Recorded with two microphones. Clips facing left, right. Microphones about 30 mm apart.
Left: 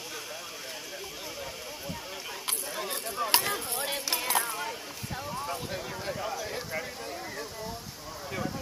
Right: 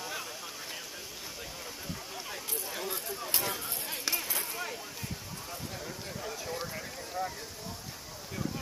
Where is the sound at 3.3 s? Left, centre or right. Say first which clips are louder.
Left 6 dB; left.